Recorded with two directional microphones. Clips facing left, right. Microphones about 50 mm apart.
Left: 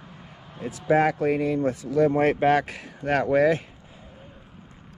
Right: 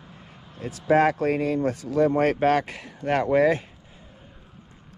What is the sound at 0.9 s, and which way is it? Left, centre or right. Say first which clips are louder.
Speech: right 1 dB; right.